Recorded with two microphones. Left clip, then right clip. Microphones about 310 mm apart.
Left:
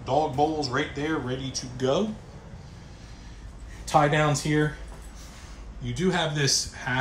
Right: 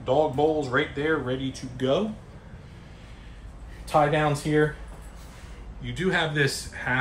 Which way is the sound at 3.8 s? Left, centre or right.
Left.